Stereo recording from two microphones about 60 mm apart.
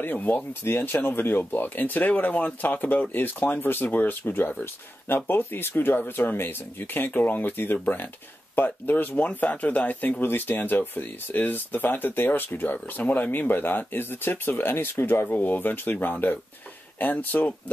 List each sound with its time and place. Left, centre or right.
0.0 s speech: left
15.2 s speech: left